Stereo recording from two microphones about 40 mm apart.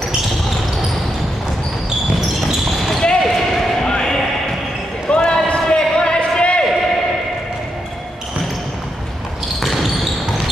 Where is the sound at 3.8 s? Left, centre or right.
Centre.